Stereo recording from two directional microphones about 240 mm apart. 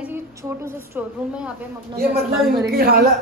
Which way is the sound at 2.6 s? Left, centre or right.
Right.